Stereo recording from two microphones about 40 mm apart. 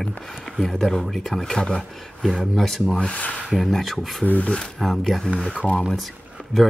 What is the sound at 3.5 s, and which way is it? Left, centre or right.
Speech, centre.